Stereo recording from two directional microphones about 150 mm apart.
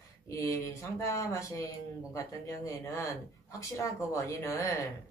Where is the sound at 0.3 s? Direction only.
20° left (ahead or behind).